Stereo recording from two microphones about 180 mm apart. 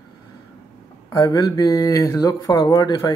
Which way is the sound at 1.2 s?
20° left (ahead or behind).